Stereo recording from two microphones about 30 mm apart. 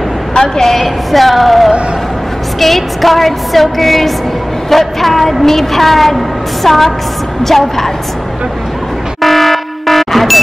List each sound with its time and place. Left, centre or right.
0.4 s a woman's voice: centre
0.7 s music: centre
7.4 s a woman's voice: centre
9.2 s air horn: centre